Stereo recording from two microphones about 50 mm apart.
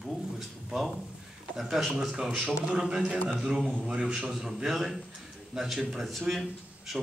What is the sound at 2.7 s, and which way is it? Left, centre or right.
A man's voice, centre.